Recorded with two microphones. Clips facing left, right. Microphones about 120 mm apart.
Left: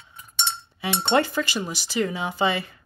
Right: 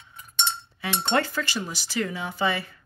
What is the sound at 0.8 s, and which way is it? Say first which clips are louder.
Speech: left 3 dB; 15° left (ahead or behind).